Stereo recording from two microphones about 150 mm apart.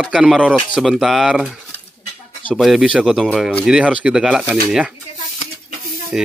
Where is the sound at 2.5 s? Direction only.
Centre (ahead or behind).